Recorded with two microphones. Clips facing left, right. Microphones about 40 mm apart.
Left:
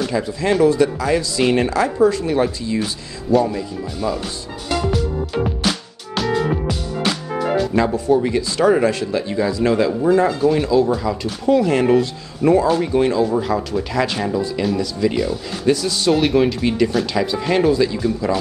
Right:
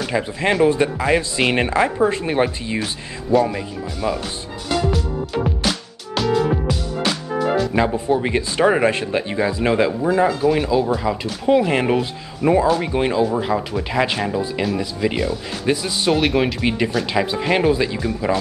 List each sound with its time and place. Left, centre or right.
0.1 s speech: right
7.7 s speech: right
8.2 s speech: right
10.0 s speech: centre
16.1 s speech: centre
16.5 s speech: right